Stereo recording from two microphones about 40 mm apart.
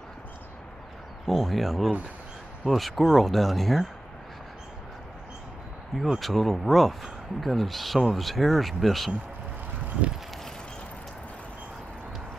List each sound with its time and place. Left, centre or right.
1.2 s speech: centre
6.1 s speech: centre